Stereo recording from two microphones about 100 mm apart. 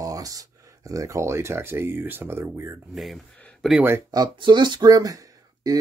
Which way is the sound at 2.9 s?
Centre (ahead or behind).